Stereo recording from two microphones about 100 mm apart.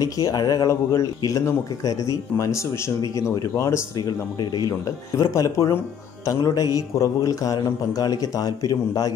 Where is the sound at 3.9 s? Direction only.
40° left (ahead or behind).